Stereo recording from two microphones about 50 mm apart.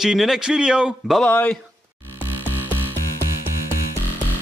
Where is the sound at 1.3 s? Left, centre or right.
Left.